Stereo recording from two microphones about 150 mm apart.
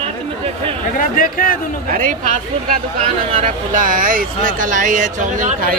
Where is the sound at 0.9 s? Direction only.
70° left (ahead or behind).